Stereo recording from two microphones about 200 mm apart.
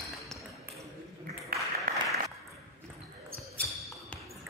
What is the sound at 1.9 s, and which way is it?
Applause, 45° right (ahead or behind).